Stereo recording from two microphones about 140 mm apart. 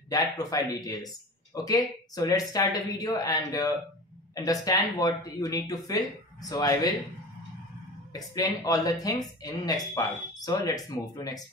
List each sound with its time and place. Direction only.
0.1 s speech: 25° left (ahead or behind)
8.1 s speech: 25° left (ahead or behind)